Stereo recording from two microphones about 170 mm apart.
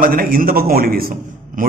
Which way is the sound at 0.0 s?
55° right (ahead or behind).